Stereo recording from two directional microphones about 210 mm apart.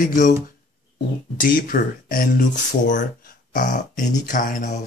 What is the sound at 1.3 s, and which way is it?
Speech, 45° left (ahead or behind).